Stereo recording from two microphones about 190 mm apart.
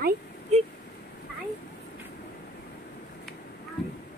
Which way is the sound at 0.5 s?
35° right (ahead or behind).